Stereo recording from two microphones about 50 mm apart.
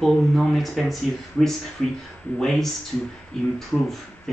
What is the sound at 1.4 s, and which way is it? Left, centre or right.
Speech, left.